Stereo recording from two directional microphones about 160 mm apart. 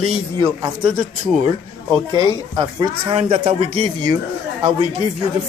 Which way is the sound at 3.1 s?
40° right (ahead or behind).